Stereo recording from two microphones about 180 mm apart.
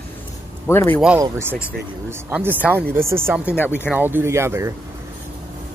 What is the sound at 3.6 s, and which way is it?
Speech, 10° left (ahead or behind).